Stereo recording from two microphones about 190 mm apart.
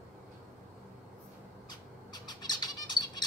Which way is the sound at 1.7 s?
20° left (ahead or behind).